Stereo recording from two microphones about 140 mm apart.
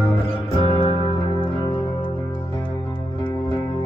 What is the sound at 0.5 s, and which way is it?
Music, 40° left (ahead or behind).